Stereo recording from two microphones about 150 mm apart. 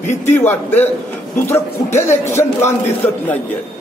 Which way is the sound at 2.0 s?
15° left (ahead or behind).